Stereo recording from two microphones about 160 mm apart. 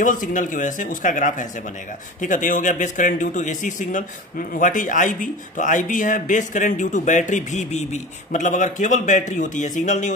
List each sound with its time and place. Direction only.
0.0 s speech: 55° left (ahead or behind)